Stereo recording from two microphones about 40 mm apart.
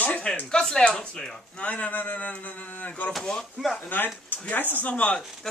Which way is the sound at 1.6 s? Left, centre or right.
Left.